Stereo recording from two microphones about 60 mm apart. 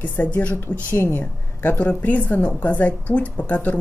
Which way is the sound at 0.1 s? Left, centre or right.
Left.